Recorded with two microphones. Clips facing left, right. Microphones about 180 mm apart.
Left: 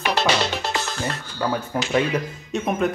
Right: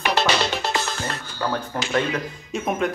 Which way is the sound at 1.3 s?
5° left (ahead or behind).